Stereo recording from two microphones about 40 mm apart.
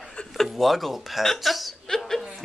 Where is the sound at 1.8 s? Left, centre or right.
Centre.